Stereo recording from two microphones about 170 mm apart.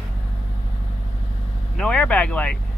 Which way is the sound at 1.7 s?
5° left (ahead or behind).